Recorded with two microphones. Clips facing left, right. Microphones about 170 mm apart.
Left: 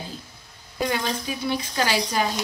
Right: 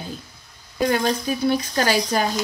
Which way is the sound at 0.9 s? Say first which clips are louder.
Right 7 dB; 45° right (ahead or behind).